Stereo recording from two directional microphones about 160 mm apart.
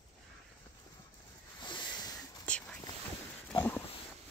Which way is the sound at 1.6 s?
30° left (ahead or behind).